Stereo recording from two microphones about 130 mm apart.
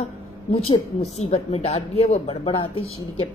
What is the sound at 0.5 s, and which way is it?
A woman's voice, 55° left (ahead or behind).